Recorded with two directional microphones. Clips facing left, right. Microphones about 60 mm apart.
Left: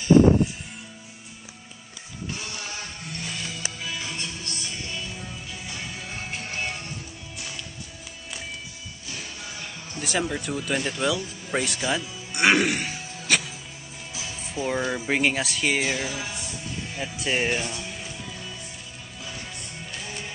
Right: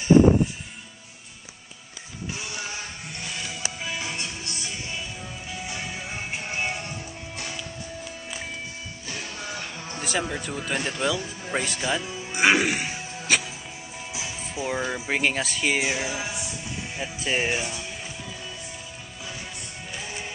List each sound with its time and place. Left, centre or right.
2.3 s music: centre
3.5 s music: right
10.0 s speech: centre
12.3 s music: centre
14.5 s speech: centre
17.0 s speech: centre